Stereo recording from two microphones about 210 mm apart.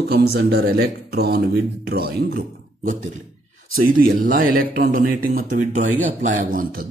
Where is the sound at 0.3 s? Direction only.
50° right (ahead or behind).